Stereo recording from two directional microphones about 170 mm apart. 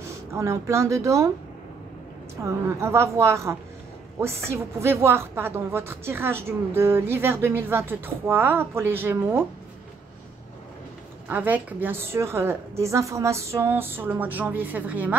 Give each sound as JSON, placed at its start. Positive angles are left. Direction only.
{"t": 0.3, "sound": "speech", "side_deg": -15}
{"t": 2.4, "sound": "speech", "side_deg": -15}
{"t": 11.2, "sound": "speech", "side_deg": -10}